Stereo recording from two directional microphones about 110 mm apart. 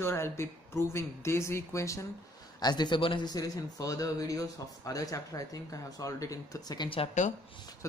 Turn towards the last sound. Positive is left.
turn(degrees=90)